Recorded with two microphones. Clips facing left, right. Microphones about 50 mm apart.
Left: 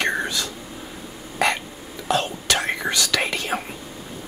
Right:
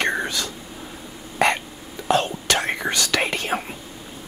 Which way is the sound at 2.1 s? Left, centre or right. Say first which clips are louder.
Right 2 dB; right.